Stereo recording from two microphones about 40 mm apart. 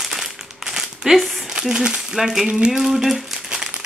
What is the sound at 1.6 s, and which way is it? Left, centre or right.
Speech, centre.